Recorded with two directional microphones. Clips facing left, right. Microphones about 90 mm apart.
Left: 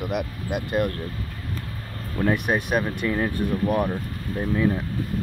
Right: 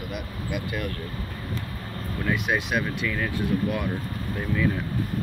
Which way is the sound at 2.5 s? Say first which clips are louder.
Left 3 dB; 50° left (ahead or behind).